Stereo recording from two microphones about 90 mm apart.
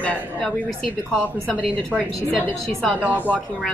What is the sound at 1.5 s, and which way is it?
A woman's voice, 15° left (ahead or behind).